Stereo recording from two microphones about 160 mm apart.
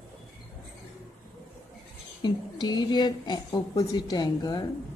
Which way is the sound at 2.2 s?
25° left (ahead or behind).